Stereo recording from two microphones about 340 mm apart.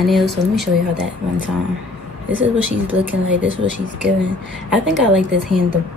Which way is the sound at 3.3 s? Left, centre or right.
Right.